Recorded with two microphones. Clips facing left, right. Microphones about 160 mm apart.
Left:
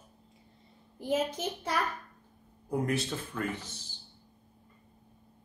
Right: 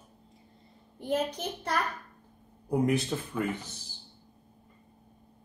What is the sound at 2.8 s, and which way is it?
Speech, 15° right (ahead or behind).